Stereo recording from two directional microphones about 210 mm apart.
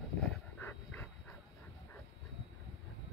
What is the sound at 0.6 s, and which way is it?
Dog, 10° left (ahead or behind).